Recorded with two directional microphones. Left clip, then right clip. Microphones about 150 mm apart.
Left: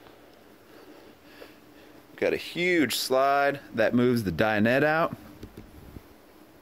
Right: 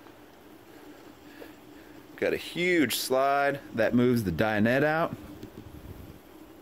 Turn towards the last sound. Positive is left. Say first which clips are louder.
# left 2 dB
turn(degrees=40)  # may be behind; listen again after turning